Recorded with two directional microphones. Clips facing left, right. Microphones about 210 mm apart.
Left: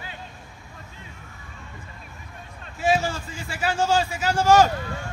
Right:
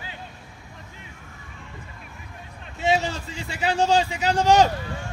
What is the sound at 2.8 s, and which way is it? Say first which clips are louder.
A man's voice: even; 20° right (ahead or behind).